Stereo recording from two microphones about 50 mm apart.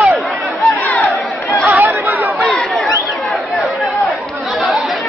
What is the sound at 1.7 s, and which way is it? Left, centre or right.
Chatter, right.